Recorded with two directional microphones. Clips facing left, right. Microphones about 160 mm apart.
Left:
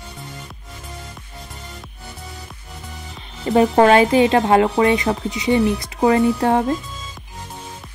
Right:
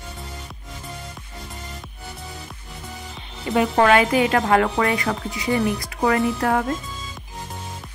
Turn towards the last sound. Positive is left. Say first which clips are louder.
# left 4 dB
turn(degrees=25)  # may be behind; listen again after turning